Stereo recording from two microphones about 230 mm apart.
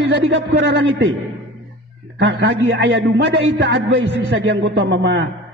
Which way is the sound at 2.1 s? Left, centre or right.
Right.